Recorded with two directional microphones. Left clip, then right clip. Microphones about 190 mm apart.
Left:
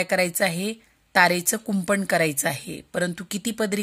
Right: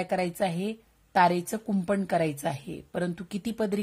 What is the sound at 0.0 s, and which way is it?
A woman's voice, 10° left (ahead or behind).